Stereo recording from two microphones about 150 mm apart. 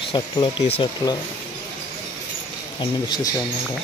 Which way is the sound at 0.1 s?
30° left (ahead or behind).